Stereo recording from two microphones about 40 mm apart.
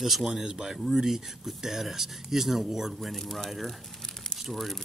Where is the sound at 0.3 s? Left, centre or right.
Centre.